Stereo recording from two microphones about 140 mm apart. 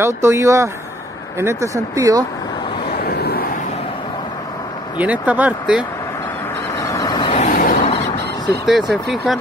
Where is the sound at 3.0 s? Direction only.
90° left; by 3.8 s 70° left (ahead or behind).